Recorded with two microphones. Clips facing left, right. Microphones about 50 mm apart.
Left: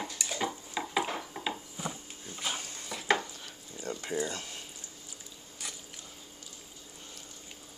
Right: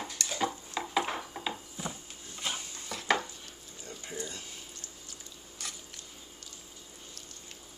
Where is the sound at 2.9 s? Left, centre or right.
Centre.